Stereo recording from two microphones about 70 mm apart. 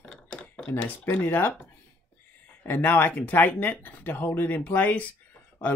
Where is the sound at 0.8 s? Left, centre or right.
Left.